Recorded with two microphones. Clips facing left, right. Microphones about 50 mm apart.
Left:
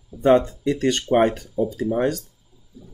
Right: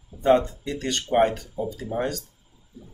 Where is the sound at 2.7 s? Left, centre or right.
Right.